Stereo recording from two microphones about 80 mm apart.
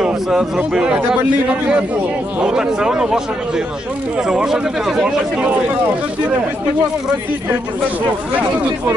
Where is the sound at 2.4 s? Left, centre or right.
Centre.